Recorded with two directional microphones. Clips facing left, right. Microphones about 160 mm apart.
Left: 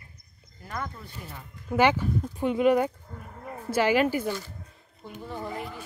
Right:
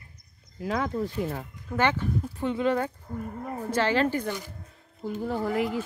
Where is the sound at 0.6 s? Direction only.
90° right.